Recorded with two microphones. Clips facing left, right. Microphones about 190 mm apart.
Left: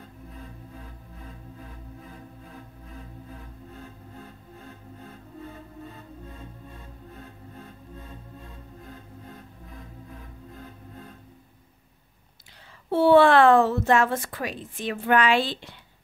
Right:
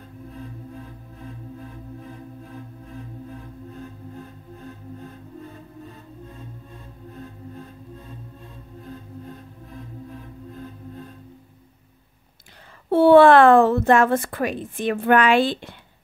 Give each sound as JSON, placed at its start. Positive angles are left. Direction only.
{"t": 12.9, "sound": "speech", "side_deg": -55}